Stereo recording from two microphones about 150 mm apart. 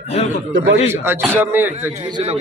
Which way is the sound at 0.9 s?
15° right (ahead or behind).